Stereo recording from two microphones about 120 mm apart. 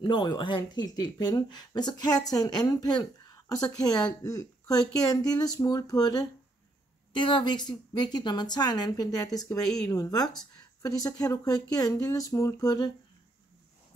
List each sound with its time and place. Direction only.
0.0 s speech: 40° left (ahead or behind)